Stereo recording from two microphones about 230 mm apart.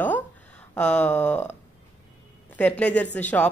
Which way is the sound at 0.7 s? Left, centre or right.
Centre.